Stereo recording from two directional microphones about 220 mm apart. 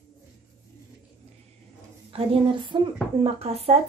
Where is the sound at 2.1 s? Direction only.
25° right (ahead or behind).